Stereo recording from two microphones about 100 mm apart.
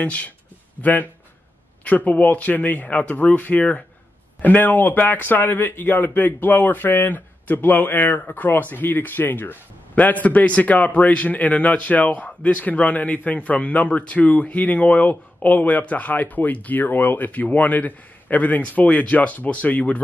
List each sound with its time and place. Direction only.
0.0 s speech: 15° left (ahead or behind)